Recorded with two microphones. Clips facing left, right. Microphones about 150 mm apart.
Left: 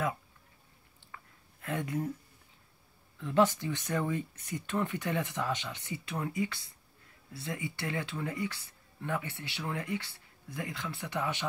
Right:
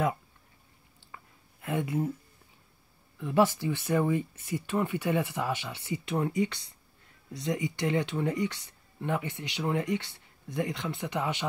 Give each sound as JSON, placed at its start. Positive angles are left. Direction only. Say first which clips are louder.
{"t": 1.1, "sound": "a sound", "louder": "right 2 dB", "side_deg": -15}
{"t": 3.2, "sound": "speech", "louder": "right 2 dB", "side_deg": -15}
{"t": 6.0, "sound": "speech", "louder": "right 6 dB", "side_deg": -25}